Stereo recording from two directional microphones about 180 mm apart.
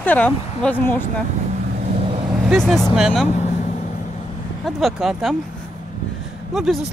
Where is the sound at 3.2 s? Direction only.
40° left (ahead or behind).